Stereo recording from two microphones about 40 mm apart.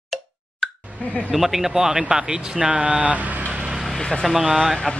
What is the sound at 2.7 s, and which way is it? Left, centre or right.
Speech, right.